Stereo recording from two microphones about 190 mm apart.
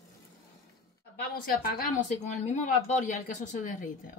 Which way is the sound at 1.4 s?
50° left (ahead or behind).